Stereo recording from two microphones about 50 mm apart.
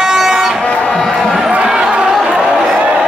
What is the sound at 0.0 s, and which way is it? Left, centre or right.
Music, centre.